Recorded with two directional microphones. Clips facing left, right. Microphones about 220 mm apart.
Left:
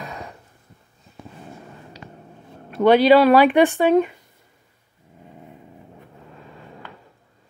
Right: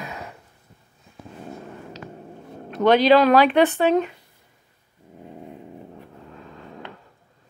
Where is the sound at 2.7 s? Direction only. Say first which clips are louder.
Left 2 dB; 10° left (ahead or behind).